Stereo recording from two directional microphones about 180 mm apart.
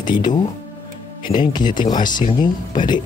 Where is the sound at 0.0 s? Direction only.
25° left (ahead or behind).